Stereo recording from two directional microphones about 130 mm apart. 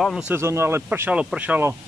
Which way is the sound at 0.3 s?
20° right (ahead or behind).